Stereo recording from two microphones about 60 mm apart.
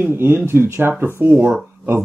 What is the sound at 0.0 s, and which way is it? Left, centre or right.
Speech, right.